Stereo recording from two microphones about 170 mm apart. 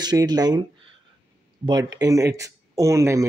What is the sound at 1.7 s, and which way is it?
Speech, 25° right (ahead or behind).